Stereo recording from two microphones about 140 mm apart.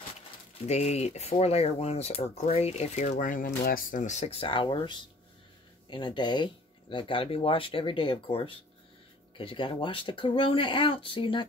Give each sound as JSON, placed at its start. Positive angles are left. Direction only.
{"t": 0.7, "sound": "speech", "side_deg": 50}